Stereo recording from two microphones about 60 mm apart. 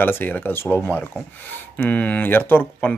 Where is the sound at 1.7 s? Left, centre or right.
Left.